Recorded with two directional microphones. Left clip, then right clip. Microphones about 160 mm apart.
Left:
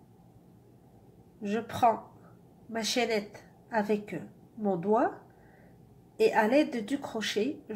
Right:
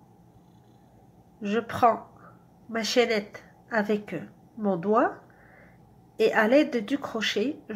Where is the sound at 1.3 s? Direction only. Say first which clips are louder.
Right 4 dB; 15° right (ahead or behind).